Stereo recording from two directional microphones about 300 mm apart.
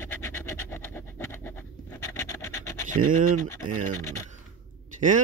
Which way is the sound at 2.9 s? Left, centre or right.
Right.